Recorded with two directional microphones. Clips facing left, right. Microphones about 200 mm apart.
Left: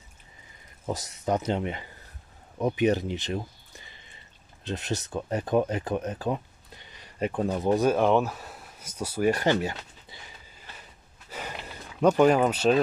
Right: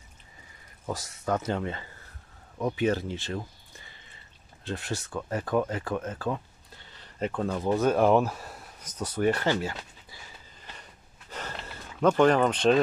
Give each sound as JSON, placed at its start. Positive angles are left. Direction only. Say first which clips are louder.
{"t": 0.8, "sound": "speech", "louder": "left 2 dB", "side_deg": 20}
{"t": 4.6, "sound": "speech", "louder": "left 2 dB", "side_deg": 20}
{"t": 7.9, "sound": "speech", "louder": "right 1 dB", "side_deg": 0}
{"t": 10.8, "sound": "gasp", "louder": "even", "side_deg": 10}